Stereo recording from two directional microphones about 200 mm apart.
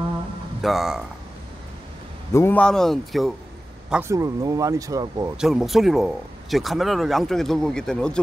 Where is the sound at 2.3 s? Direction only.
10° left (ahead or behind).